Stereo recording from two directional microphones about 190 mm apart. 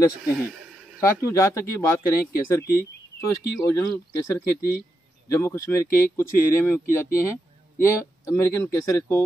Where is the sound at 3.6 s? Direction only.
15° left (ahead or behind).